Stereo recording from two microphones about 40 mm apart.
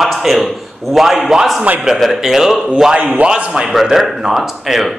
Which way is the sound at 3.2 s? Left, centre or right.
Right.